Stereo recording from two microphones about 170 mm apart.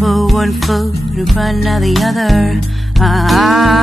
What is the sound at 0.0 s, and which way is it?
Music, centre (ahead or behind).